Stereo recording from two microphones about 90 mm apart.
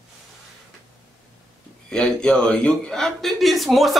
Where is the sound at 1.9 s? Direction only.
10° left (ahead or behind).